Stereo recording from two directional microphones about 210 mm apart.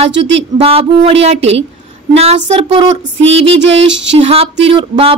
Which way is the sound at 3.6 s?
60° right (ahead or behind).